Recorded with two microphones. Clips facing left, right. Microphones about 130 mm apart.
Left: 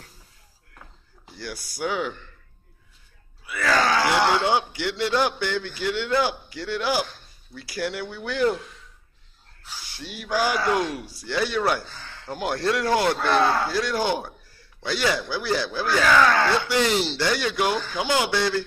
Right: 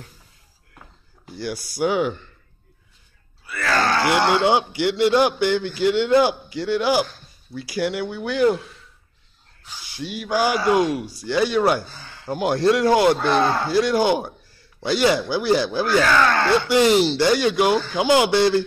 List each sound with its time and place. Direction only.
1.4 s speech: 20° right (ahead or behind)
3.4 s grunt: 5° left (ahead or behind)
4.3 s speech: 15° right (ahead or behind)
9.9 s speech: 10° right (ahead or behind)
16.0 s speech: centre (ahead or behind)
16.7 s speech: 15° right (ahead or behind)